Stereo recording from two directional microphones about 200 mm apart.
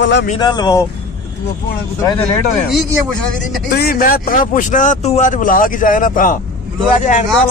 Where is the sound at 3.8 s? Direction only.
45° left (ahead or behind).